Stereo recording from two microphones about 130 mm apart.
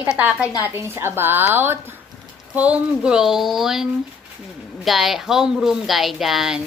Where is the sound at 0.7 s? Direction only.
20° right (ahead or behind).